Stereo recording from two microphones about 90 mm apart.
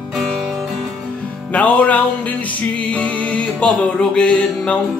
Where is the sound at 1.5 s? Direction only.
15° left (ahead or behind).